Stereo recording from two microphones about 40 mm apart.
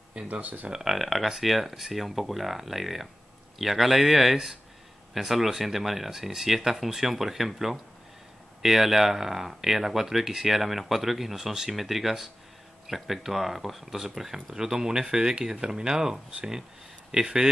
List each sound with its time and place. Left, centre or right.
0.3 s speech: right
0.7 s speech: centre
0.9 s speech: centre